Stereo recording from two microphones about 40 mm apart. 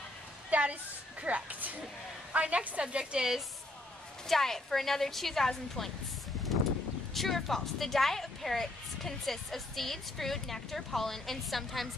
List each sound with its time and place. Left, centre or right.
0.5 s a sound: right
1.2 s a woman's voice: right
4.3 s a woman's voice: centre
7.2 s speech: centre